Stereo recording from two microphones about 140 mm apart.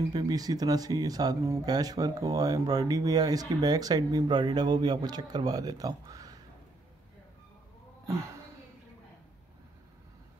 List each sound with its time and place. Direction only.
0.1 s speech: 30° right (ahead or behind)
8.1 s speech: 20° right (ahead or behind)